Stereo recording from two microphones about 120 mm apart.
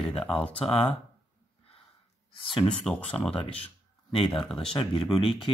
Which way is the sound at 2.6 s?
5° left (ahead or behind).